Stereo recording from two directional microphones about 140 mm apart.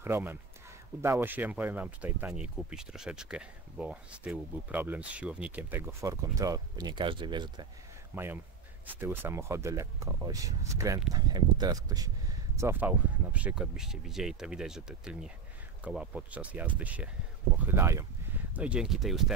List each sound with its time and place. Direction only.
0.0 s speech: 15° right (ahead or behind); by 7.6 s 35° right (ahead or behind)
8.1 s speech: 15° right (ahead or behind)
12.5 s speech: 15° right (ahead or behind)
18.5 s speech: 10° right (ahead or behind)